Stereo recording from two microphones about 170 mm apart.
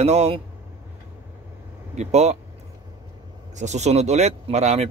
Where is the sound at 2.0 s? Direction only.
40° right (ahead or behind).